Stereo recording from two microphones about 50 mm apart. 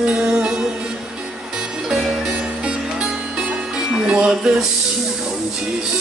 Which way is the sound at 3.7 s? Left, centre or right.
Centre.